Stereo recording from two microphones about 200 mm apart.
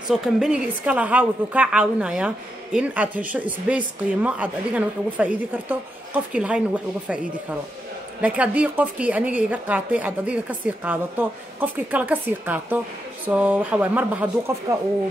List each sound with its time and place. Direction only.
0.1 s a woman's voice: 5° right (ahead or behind)
8.2 s a woman's voice: 5° right (ahead or behind)